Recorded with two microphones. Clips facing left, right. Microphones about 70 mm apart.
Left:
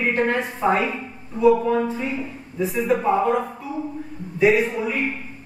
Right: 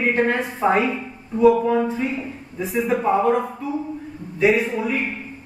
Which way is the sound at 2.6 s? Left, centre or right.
Centre.